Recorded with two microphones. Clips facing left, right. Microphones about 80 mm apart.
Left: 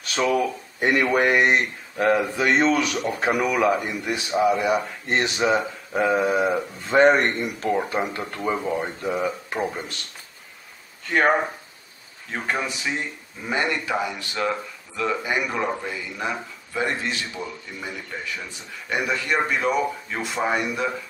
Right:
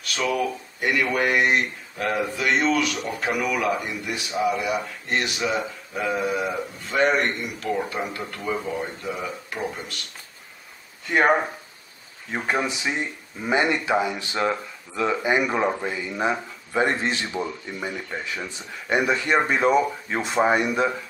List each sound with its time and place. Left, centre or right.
0.0 s a sound: left
0.7 s speech: left
11.1 s speech: centre